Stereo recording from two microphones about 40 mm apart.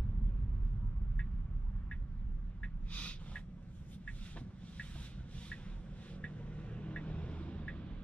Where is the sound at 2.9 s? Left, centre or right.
Left.